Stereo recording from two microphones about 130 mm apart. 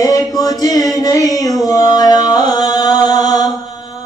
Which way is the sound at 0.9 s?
25° left (ahead or behind).